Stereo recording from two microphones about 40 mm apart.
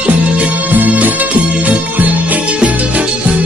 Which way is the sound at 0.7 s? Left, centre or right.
Right.